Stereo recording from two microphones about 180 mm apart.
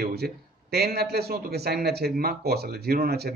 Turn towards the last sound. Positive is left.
turn(degrees=-60)  # may be behind; listen again after turning